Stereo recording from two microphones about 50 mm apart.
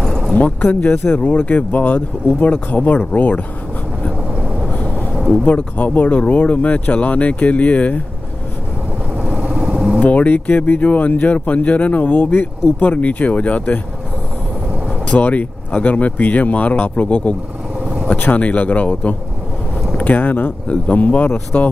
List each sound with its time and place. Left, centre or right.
0.0 s a sound: centre
0.4 s speech: left
1.2 s speech: left
5.4 s speech: left
9.2 s vehicle: right
10.0 s speech: left
15.0 s speech: left